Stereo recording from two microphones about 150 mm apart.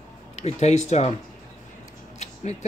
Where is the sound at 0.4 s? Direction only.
50° left (ahead or behind).